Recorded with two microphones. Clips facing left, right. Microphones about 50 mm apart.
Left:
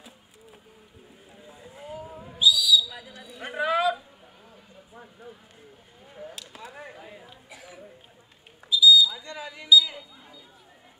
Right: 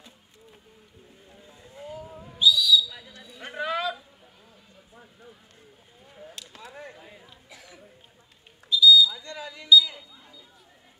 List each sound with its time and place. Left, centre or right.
1.3 s owl: centre
3.1 s a sound: centre
9.1 s smoke detector: centre